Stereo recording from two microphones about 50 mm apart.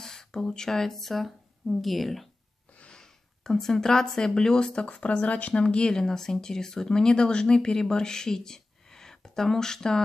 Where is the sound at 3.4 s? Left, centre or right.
Centre; by 5.6 s left.